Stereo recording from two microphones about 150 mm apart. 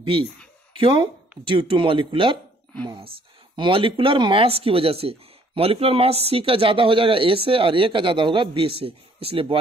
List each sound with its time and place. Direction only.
0.0 s speech: 35° right (ahead or behind)
3.5 s speech: 35° right (ahead or behind)